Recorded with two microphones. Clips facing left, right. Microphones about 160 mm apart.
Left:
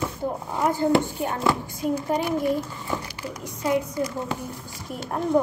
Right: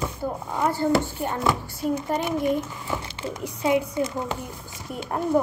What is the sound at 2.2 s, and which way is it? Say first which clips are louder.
A woman's voice: even; 20° right (ahead or behind).